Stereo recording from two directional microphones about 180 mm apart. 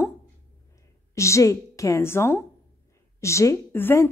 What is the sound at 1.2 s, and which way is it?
A woman's voice, 15° left (ahead or behind).